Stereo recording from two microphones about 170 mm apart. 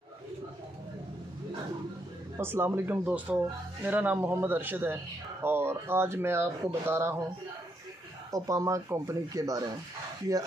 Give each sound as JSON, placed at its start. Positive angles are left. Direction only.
{"t": 2.3, "sound": "speech", "side_deg": -15}
{"t": 8.3, "sound": "speech", "side_deg": -20}